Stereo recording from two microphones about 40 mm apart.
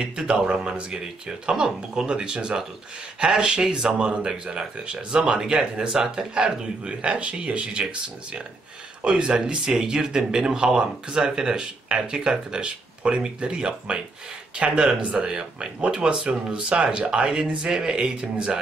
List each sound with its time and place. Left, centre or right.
0.0 s speech: right